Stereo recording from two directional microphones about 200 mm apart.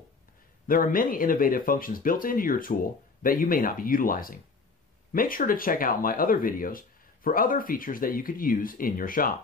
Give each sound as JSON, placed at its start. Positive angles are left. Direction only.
{"t": 0.7, "sound": "speech", "side_deg": 45}